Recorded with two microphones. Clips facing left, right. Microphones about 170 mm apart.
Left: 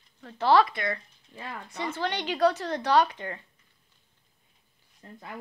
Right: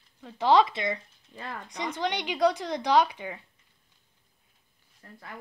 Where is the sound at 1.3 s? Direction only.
Centre (ahead or behind).